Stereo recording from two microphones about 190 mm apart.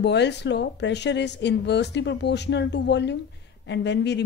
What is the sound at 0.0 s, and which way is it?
Speech, 65° left (ahead or behind).